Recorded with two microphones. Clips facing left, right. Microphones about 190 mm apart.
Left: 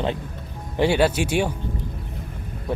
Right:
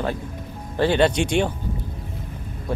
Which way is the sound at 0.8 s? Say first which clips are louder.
Right 1 dB; 10° left (ahead or behind).